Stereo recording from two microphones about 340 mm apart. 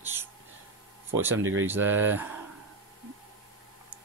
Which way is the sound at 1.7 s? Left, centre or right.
Centre.